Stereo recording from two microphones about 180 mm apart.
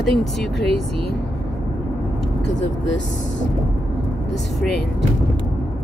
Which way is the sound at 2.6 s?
90° left.